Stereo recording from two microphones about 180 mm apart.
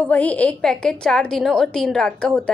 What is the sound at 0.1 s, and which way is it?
A woman's voice, 10° left (ahead or behind).